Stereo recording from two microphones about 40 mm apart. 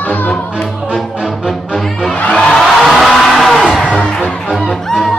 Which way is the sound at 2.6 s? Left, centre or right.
Centre.